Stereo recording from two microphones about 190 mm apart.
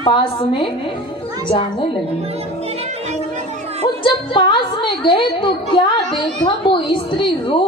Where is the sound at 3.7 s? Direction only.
25° left (ahead or behind).